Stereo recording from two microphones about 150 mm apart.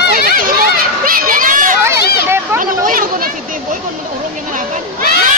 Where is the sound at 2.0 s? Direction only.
90° left.